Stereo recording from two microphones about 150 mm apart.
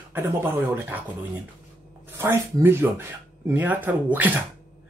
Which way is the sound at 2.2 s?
15° right (ahead or behind).